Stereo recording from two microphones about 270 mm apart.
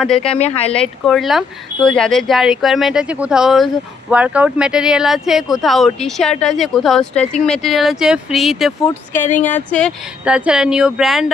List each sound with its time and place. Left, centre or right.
0.0 s speech: centre
0.3 s speech: left
0.7 s speech: centre